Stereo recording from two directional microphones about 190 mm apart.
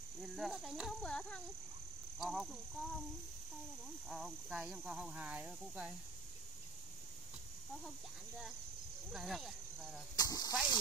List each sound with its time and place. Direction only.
0.2 s speech: centre (ahead or behind)
4.1 s speech: centre (ahead or behind)
9.1 s speech: centre (ahead or behind)
10.1 s speech: 20° left (ahead or behind)